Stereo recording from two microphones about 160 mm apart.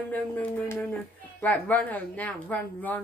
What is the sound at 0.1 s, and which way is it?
Speech, 10° left (ahead or behind).